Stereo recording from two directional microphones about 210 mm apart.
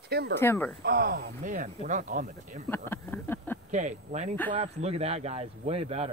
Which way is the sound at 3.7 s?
35° right (ahead or behind).